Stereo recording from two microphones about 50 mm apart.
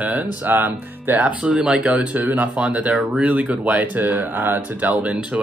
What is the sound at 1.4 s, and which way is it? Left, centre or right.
Speech, right.